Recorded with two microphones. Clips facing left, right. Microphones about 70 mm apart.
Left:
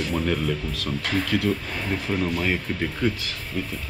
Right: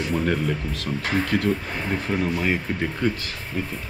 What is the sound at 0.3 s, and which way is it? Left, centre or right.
Speech, right.